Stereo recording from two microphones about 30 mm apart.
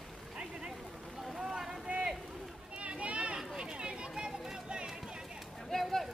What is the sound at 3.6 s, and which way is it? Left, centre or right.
Run, right.